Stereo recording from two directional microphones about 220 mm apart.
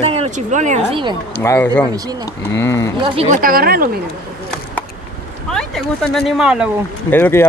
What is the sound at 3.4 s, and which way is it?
Speech, 40° right (ahead or behind).